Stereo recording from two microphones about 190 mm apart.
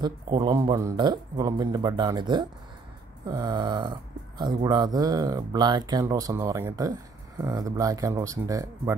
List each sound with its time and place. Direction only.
0.0 s speech: 25° right (ahead or behind)